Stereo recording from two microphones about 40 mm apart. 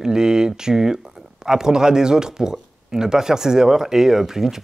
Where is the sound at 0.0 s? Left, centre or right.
Centre.